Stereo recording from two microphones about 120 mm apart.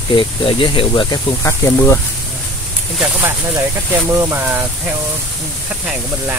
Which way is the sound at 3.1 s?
15° right (ahead or behind).